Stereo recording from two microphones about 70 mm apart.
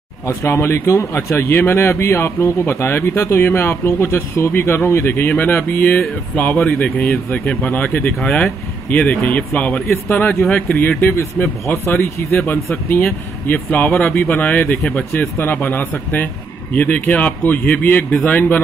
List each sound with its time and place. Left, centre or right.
0.3 s a man's voice: left
5.3 s speech: left
8.2 s a man's voice: centre